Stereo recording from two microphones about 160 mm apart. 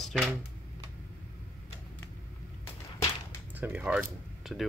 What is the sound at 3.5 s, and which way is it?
Speech, 10° right (ahead or behind).